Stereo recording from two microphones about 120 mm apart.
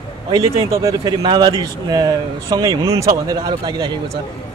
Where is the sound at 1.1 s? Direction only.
40° right (ahead or behind).